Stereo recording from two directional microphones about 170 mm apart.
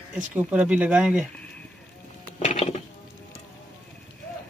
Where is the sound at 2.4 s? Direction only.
40° left (ahead or behind).